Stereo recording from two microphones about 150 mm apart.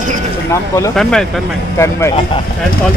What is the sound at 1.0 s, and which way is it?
Speech, 5° left (ahead or behind).